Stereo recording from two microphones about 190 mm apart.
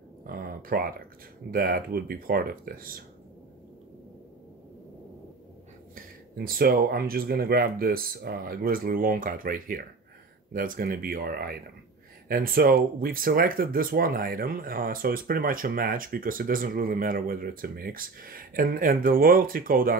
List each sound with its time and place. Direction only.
0.3 s speech: 50° right (ahead or behind)
5.9 s speech: 50° right (ahead or behind)